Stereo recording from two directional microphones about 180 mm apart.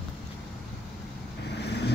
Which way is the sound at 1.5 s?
65° left (ahead or behind).